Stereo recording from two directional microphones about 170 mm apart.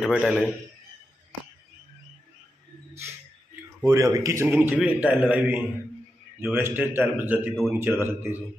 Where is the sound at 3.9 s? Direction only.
15° right (ahead or behind).